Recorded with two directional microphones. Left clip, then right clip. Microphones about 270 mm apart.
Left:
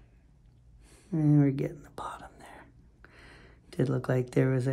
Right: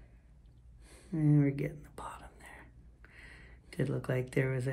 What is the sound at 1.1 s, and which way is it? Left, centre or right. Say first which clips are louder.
Speech: left 5 dB; left.